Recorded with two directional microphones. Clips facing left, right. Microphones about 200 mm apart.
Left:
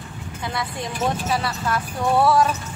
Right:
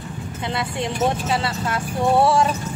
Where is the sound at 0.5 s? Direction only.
25° right (ahead or behind).